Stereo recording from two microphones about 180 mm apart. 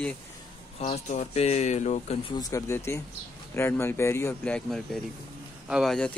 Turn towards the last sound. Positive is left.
turn(degrees=0)  # may be behind; listen again after turning